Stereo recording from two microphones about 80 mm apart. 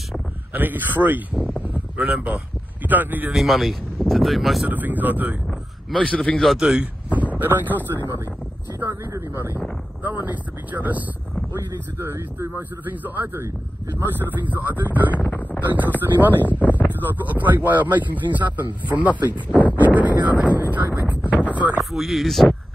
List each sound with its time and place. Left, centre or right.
0.5 s speech: right
1.7 s a sound: right
2.1 s speech: centre
3.3 s speech: centre
4.6 s speech: right
5.5 s speech: centre
6.6 s speech: centre
8.7 s a sound: right
10.0 s speech: right
11.5 s speech: right
16.3 s a sound: left
16.9 s speech: right
21.9 s speech: centre